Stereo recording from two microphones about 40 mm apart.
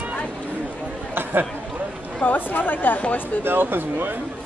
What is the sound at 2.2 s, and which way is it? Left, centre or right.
Speech, left.